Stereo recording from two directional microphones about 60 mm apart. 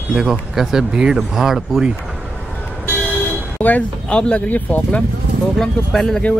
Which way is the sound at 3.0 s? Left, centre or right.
Left.